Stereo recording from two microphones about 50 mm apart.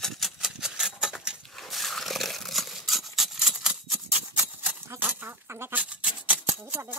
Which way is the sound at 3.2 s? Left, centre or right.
Centre.